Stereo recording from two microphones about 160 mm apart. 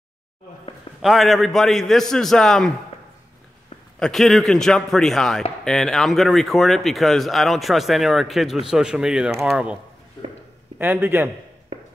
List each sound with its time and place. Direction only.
1.0 s speech: centre (ahead or behind)
4.0 s speech: centre (ahead or behind)
10.8 s a man's voice: 10° right (ahead or behind)